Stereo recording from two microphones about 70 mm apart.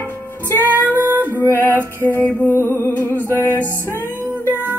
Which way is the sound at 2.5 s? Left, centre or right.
Left.